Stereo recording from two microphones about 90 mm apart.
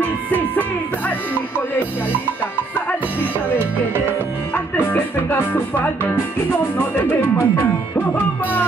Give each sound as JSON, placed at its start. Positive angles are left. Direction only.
{"t": 0.0, "sound": "music", "side_deg": 20}
{"t": 4.7, "sound": "music", "side_deg": 20}
{"t": 7.0, "sound": "speech", "side_deg": 25}